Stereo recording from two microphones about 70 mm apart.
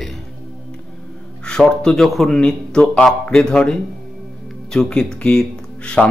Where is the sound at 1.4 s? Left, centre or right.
Centre.